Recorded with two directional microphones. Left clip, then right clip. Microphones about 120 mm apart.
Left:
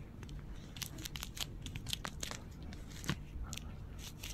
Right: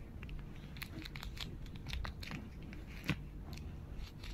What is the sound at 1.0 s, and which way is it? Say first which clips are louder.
Crumpling: left 5 dB; 35° left (ahead or behind).